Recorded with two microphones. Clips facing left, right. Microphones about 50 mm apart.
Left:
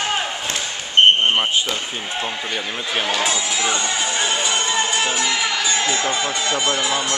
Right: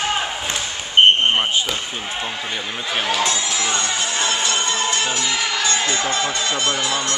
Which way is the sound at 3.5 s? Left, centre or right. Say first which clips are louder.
Left 1 dB; centre.